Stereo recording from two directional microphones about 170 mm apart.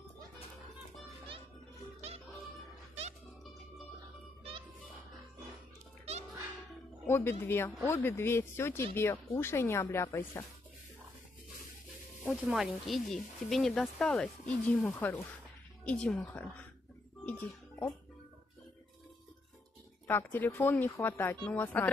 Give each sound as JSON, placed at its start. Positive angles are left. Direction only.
{"t": 7.1, "sound": "speech", "side_deg": 15}
{"t": 12.3, "sound": "speech", "side_deg": -5}
{"t": 20.1, "sound": "speech", "side_deg": 10}